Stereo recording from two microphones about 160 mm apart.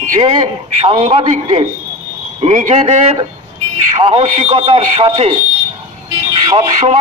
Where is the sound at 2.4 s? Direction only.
45° right (ahead or behind).